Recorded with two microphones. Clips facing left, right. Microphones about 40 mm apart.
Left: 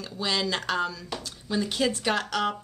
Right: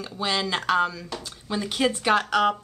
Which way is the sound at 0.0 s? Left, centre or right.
Right.